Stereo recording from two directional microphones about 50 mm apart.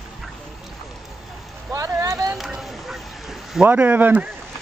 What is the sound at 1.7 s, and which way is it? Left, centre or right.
Vehicle, right.